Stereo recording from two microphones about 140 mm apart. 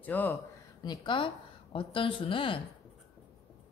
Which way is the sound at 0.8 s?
35° left (ahead or behind).